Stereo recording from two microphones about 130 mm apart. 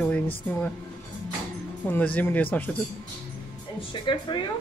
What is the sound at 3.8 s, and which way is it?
Speech, 40° left (ahead or behind).